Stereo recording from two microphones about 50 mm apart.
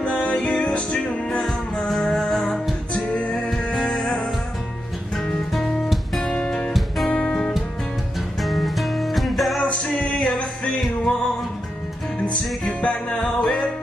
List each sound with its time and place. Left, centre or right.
0.0 s music: centre
1.8 s music: centre
2.9 s music: left
3.4 s music: centre
5.1 s music: centre
6.4 s music: centre
8.4 s music: centre
9.6 s music: left
12.2 s music: left